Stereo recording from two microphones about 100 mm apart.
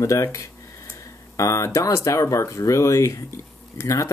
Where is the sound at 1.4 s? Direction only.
30° left (ahead or behind).